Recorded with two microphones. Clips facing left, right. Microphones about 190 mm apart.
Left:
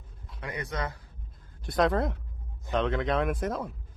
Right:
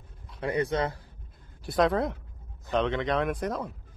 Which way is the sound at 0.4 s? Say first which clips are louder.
Right 7 dB; 30° right (ahead or behind).